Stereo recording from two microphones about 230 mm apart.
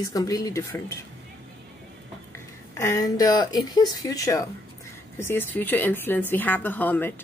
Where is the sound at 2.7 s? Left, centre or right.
Centre.